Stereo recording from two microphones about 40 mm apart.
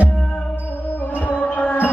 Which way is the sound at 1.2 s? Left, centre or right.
Left.